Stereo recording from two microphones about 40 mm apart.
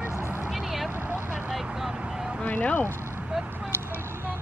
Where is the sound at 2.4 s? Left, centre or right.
Left.